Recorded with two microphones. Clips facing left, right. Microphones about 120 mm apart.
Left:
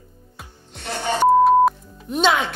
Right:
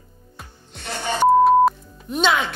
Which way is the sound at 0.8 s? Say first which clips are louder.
Left 2 dB; 35° left (ahead or behind).